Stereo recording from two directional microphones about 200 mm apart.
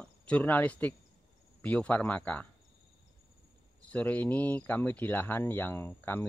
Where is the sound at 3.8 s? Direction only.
5° left (ahead or behind).